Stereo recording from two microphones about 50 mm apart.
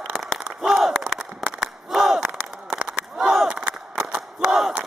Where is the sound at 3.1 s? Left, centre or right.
Centre.